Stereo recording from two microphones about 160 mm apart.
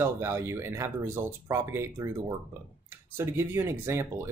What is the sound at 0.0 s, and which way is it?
Speech, 15° right (ahead or behind).